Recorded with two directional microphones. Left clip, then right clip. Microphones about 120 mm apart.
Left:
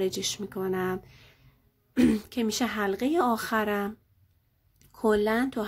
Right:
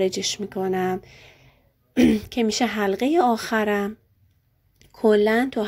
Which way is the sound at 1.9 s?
10° right (ahead or behind).